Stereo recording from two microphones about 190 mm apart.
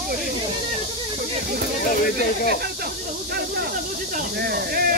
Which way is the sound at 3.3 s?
55° right (ahead or behind).